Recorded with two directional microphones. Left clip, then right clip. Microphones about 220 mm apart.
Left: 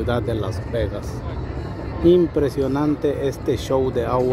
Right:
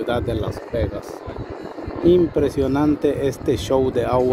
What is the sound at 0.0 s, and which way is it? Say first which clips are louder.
Speech: right 1 dB; 15° right (ahead or behind).